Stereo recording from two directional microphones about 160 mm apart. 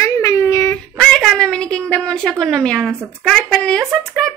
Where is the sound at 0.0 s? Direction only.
15° left (ahead or behind).